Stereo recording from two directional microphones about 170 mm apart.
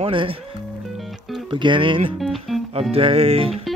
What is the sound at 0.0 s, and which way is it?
Speech, 30° right (ahead or behind).